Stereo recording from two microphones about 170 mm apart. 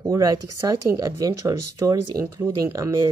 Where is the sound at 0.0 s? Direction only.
20° right (ahead or behind).